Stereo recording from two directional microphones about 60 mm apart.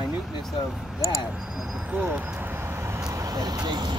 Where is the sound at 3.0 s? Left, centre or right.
Right.